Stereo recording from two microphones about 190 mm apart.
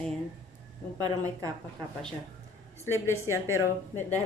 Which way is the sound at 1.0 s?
20° right (ahead or behind).